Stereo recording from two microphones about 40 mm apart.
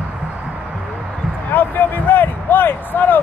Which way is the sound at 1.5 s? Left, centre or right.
Left.